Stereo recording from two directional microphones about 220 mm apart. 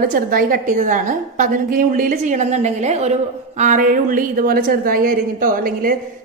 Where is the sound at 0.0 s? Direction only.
40° right (ahead or behind).